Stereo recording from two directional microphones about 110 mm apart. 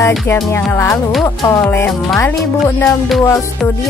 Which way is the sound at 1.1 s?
Centre (ahead or behind).